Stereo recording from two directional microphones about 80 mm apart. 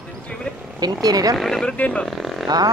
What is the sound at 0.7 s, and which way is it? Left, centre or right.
Speech, right.